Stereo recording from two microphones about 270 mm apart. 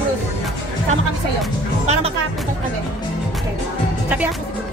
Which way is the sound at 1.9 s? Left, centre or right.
Right.